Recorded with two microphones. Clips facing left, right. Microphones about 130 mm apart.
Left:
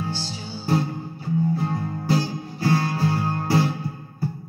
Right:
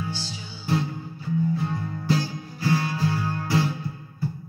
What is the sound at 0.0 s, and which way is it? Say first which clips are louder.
Music: left 3 dB; 40° left (ahead or behind).